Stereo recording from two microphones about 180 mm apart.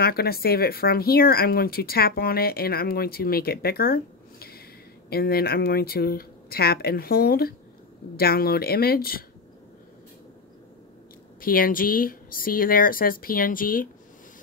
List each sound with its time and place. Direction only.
0.0 s speech: 60° left (ahead or behind)
11.4 s speech: 50° left (ahead or behind)